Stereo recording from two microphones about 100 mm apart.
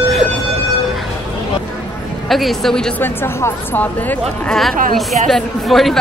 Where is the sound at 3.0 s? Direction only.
25° left (ahead or behind).